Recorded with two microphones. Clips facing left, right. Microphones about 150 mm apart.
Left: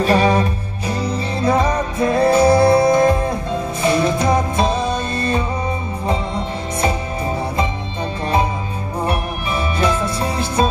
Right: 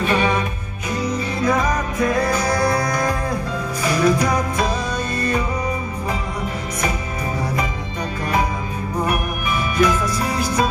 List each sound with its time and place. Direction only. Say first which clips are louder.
0.0 s music: left 4 dB; 35° left (ahead or behind)
9.8 s music: right 2 dB; 30° left (ahead or behind)